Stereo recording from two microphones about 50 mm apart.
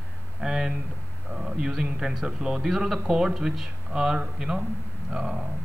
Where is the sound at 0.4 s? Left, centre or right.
Centre.